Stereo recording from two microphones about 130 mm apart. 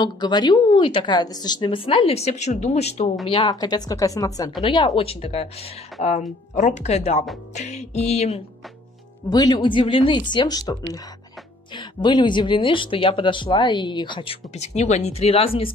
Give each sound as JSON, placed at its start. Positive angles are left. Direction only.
{"t": 0.0, "sound": "speech", "side_deg": 35}
{"t": 3.3, "sound": "a woman's voice", "side_deg": 40}
{"t": 4.6, "sound": "speech", "side_deg": 40}
{"t": 6.0, "sound": "music", "side_deg": 65}
{"t": 9.3, "sound": "speech", "side_deg": 30}